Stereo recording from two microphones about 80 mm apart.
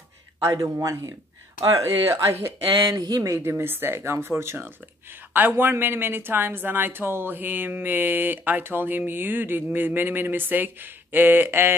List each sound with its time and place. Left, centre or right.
0.4 s speech: right
2.6 s speech: right
3.0 s speech: right
3.3 s speech: right